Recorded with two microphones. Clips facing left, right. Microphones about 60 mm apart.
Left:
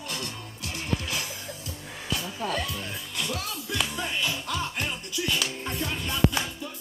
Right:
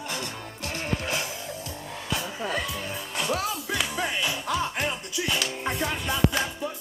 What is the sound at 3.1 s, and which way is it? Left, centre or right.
Music, right.